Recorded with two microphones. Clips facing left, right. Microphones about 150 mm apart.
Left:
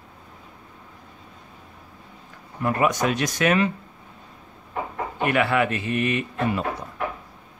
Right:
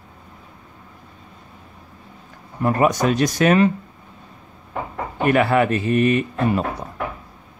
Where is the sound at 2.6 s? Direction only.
35° right (ahead or behind).